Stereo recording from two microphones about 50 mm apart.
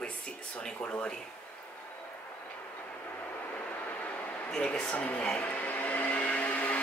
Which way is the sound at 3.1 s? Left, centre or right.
Left.